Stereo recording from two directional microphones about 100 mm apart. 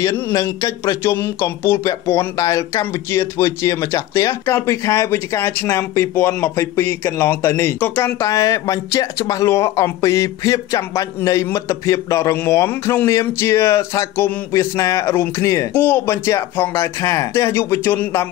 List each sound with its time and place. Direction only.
0.0 s a man's voice: 35° left (ahead or behind); by 8.1 s 20° left (ahead or behind)
8.2 s a man's voice: 35° left (ahead or behind)